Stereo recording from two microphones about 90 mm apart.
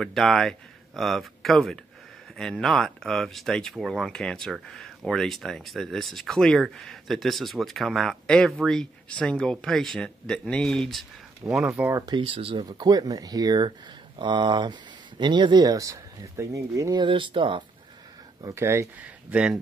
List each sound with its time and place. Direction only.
0.0 s speech: 5° left (ahead or behind)
12.2 s speech: 90° right
12.6 s speech: 50° right (ahead or behind)
13.7 s speech: 65° right (ahead or behind); by 17.0 s 35° right (ahead or behind)
17.0 s speech: 65° right (ahead or behind)
18.5 s speech: 30° right (ahead or behind)
18.9 s speech: 15° right (ahead or behind)